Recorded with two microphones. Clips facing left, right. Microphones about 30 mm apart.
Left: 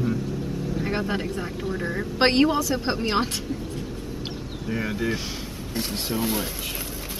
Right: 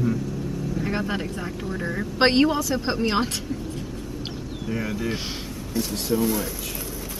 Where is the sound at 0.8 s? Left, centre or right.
Centre.